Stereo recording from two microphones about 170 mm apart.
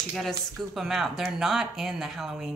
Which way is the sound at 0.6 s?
Centre (ahead or behind).